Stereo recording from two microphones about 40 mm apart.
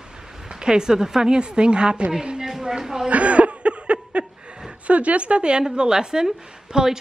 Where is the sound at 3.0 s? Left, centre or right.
Right.